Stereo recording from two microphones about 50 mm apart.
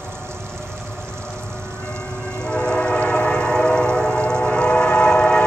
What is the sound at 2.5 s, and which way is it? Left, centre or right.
Train, left.